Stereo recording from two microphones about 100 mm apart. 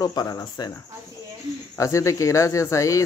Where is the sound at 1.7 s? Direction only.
30° left (ahead or behind).